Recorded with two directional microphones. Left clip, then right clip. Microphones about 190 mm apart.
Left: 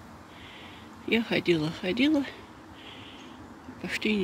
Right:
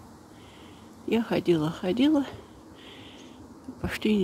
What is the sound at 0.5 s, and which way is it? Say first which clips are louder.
Speech: left 3 dB; 10° right (ahead or behind).